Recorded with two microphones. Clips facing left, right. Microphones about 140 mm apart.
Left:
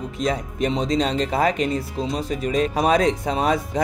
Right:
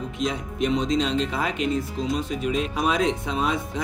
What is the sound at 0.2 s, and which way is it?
Speech, 40° left (ahead or behind).